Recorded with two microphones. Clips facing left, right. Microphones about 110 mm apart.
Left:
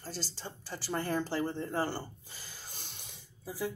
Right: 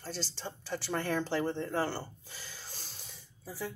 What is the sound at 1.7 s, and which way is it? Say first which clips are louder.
Gasp: right 1 dB; 45° left (ahead or behind).